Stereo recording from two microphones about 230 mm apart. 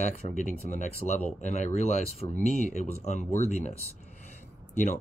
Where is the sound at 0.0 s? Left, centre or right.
Left.